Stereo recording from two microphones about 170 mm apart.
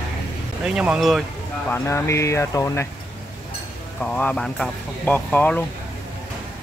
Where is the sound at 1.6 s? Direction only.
15° left (ahead or behind).